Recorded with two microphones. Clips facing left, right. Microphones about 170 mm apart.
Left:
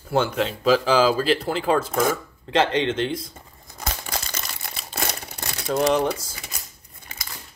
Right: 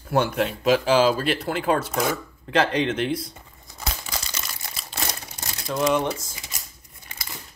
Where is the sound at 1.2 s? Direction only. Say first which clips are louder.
Left 2 dB; 30° left (ahead or behind).